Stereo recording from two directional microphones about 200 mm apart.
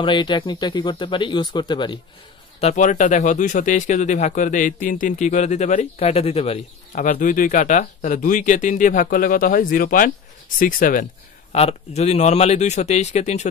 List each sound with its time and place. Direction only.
0.0 s speech: 25° left (ahead or behind)
2.6 s speech: 35° left (ahead or behind)
11.5 s speech: 30° left (ahead or behind)